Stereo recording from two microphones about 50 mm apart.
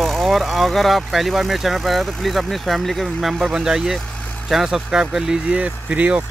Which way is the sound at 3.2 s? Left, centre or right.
Centre.